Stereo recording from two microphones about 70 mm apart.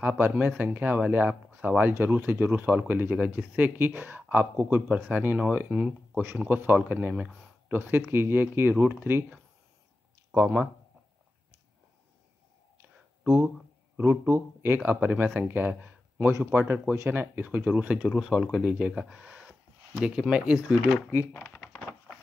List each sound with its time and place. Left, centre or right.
0.0 s speech: right
5.7 s speech: centre
6.5 s speech: right
10.4 s speech: right
13.9 s speech: right
16.3 s speech: right
16.5 s speech: right
18.1 s speech: centre
21.3 s speech: left
21.5 s a sound: centre